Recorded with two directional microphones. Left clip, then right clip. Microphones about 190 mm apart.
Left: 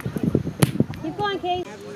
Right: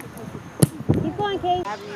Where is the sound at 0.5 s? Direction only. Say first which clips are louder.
Right 1 dB; 5° left (ahead or behind).